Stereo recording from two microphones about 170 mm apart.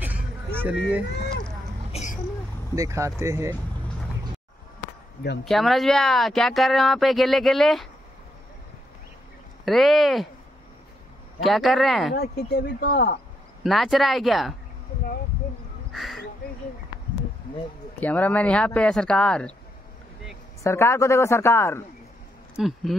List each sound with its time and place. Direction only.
0.6 s speech: 10° right (ahead or behind)
1.9 s vehicle: 40° left (ahead or behind)
2.7 s speech: 20° right (ahead or behind)
5.4 s speech: centre (ahead or behind)
9.7 s speech: centre (ahead or behind)
11.4 s speech: centre (ahead or behind)
12.1 s speech: 75° left (ahead or behind)
13.7 s speech: centre (ahead or behind)
15.9 s a sound: centre (ahead or behind)
18.0 s speech: 10° left (ahead or behind)
20.6 s speech: 15° left (ahead or behind)
22.6 s speech: centre (ahead or behind)